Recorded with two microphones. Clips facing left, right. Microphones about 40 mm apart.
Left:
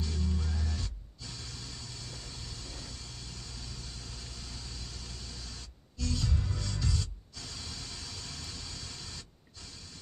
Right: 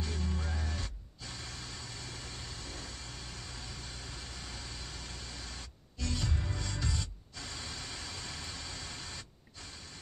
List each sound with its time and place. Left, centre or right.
0.0 s music: right